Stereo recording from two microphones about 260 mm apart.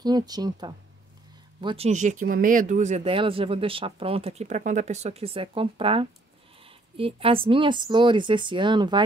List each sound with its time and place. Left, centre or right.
0.0 s speech: centre